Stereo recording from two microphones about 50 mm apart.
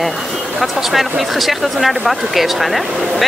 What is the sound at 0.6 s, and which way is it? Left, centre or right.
Speech, centre.